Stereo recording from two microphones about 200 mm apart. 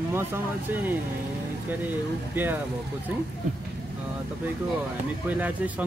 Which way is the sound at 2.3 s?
10° right (ahead or behind).